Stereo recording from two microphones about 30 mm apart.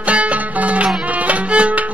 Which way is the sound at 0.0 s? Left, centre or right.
Right.